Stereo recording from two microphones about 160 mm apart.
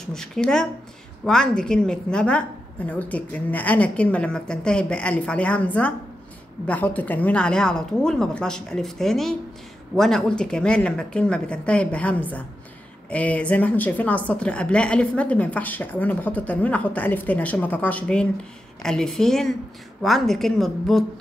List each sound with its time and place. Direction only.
0.0 s a woman's voice: 5° left (ahead or behind)